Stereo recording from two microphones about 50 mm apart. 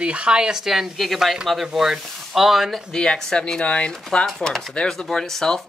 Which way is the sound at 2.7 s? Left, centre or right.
Centre.